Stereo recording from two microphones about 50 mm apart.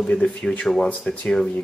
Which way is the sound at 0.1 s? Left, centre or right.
Centre.